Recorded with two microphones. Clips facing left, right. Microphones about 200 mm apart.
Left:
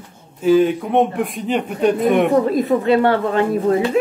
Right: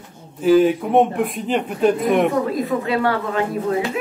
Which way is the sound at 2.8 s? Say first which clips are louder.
Left 5 dB; 25° left (ahead or behind).